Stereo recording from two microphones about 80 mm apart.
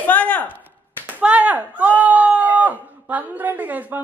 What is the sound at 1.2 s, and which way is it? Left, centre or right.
Speech, centre.